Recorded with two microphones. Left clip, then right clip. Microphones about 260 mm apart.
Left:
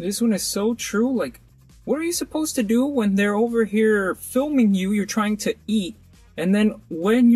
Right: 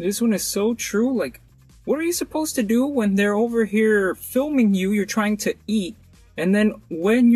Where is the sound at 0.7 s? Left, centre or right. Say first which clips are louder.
Left 2 dB; centre.